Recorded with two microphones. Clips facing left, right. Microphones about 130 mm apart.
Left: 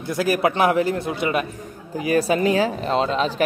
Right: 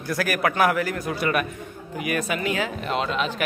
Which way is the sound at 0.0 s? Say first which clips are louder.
Left 4 dB; 20° left (ahead or behind).